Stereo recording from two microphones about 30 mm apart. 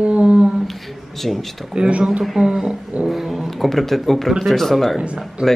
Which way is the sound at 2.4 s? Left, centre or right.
Centre.